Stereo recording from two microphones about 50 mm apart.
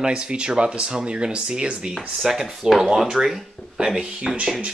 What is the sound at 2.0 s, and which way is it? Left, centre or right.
Speech, centre.